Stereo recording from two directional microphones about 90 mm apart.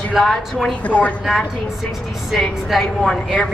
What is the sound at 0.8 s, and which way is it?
Speech, 15° left (ahead or behind).